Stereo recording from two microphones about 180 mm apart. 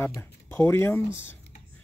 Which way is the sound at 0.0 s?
15° left (ahead or behind).